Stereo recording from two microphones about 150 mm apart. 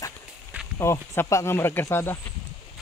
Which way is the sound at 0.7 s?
15° left (ahead or behind).